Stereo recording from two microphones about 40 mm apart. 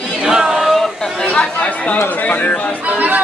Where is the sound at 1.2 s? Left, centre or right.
Left.